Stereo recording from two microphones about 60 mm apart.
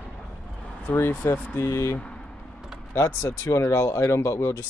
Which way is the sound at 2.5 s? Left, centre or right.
Centre.